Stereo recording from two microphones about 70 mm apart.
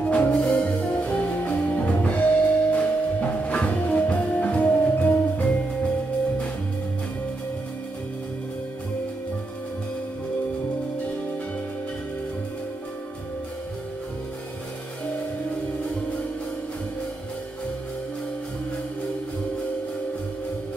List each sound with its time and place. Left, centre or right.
0.0 s music: centre